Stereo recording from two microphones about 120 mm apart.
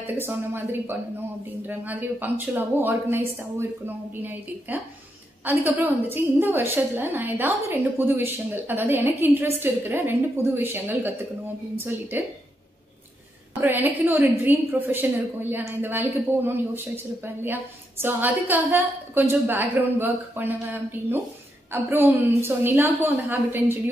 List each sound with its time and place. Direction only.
0.0 s a woman's voice: 20° right (ahead or behind)
13.6 s a woman's voice: 15° right (ahead or behind)